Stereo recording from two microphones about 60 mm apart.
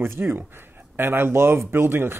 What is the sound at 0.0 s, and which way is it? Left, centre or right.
Speech, right.